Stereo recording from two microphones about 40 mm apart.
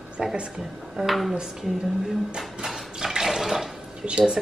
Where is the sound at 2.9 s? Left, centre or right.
Centre.